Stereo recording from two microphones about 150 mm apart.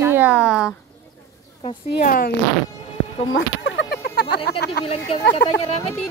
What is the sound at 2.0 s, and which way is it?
Speech, 75° left (ahead or behind).